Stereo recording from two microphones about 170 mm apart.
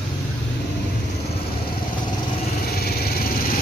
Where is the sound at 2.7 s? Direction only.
65° left (ahead or behind).